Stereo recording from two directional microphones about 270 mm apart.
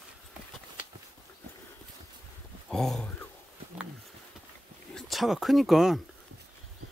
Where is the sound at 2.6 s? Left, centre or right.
Centre.